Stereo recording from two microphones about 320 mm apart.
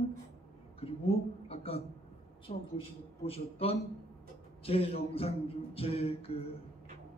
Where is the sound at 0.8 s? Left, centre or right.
Centre.